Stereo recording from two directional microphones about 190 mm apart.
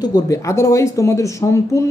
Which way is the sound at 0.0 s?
20° left (ahead or behind).